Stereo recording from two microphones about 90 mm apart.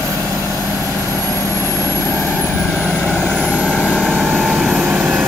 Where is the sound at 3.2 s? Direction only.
10° left (ahead or behind).